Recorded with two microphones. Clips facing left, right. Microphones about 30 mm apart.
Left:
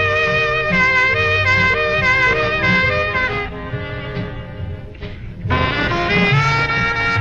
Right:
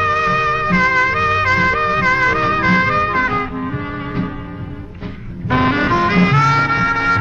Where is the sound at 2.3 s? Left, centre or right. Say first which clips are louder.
Right 1 dB; left.